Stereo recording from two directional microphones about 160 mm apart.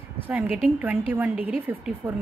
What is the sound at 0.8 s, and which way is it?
A woman's voice, 10° right (ahead or behind).